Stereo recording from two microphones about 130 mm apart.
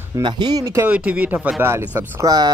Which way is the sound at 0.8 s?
10° right (ahead or behind).